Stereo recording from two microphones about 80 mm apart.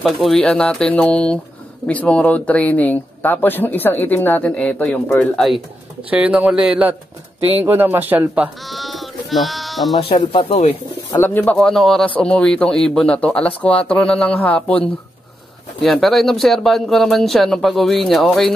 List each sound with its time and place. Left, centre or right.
0.0 s speech: centre
5.3 s speech: centre
6.0 s speech: centre
7.6 s speech: right
8.6 s speech: centre
11.1 s speech: left
11.5 s speech: centre
15.8 s speech: centre